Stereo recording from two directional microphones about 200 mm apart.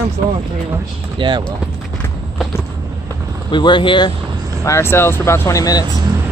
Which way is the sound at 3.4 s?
25° left (ahead or behind).